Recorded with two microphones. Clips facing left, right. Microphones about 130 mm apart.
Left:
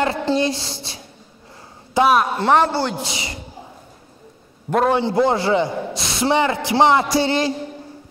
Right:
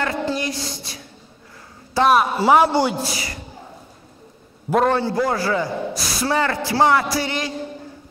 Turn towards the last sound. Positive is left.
turn(degrees=30)  # may be behind; listen again after turning